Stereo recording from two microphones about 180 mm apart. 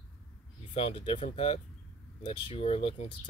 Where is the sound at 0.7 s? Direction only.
30° left (ahead or behind).